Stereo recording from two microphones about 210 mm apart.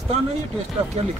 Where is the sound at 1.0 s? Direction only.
30° right (ahead or behind).